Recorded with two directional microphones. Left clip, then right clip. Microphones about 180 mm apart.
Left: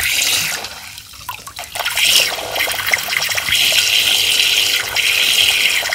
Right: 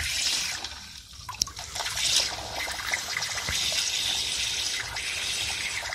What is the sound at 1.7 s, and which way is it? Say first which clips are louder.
Water: left 14 dB; 25° left (ahead or behind).